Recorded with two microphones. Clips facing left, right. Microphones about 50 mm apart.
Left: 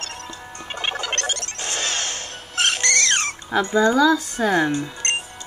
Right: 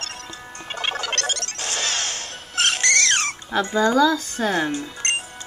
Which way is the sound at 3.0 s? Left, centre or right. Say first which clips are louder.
Even; left.